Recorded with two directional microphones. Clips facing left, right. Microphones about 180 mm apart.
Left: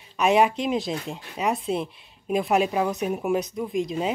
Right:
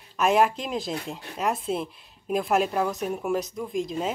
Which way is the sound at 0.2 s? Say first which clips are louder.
Left 2 dB; centre (ahead or behind).